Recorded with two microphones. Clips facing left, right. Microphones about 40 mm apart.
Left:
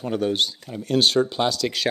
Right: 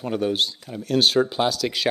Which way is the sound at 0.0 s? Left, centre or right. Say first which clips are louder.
Even; centre.